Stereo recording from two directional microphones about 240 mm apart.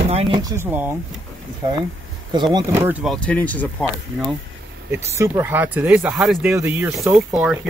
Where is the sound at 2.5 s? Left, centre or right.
Centre.